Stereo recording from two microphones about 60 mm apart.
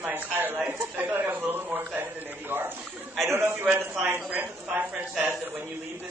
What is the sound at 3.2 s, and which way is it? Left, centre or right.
Speech, right.